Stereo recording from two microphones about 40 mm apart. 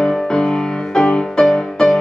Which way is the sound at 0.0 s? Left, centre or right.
Centre.